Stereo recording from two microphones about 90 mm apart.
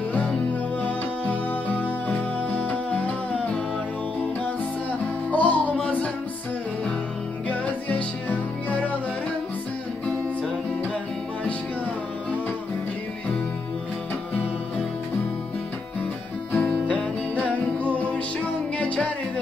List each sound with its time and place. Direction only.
0.1 s music: 15° left (ahead or behind)
5.0 s music: 15° left (ahead or behind)
7.4 s music: 15° left (ahead or behind)
16.5 s music: 20° left (ahead or behind)